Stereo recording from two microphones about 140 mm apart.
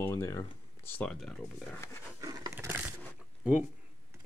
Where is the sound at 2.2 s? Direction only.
25° right (ahead or behind).